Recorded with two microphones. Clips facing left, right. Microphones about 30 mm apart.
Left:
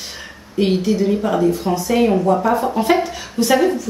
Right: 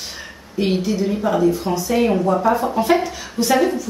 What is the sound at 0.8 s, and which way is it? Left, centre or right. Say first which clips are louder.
Speech: left 3 dB; centre.